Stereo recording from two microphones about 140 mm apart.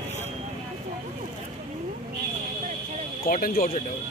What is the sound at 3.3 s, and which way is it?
Speech, 90° left.